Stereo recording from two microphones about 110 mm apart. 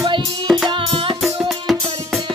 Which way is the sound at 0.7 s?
55° right (ahead or behind).